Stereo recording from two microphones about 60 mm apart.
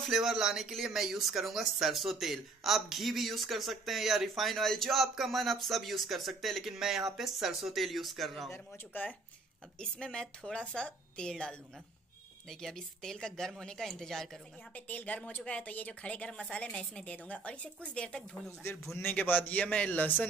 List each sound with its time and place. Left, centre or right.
0.1 s speech: centre
8.9 s speech: left
9.8 s a woman's voice: centre
14.9 s a woman's voice: left
19.9 s speech: left